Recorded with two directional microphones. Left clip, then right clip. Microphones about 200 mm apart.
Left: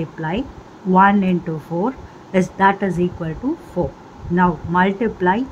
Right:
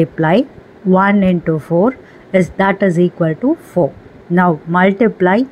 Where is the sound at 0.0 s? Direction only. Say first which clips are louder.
Right 12 dB; 25° right (ahead or behind).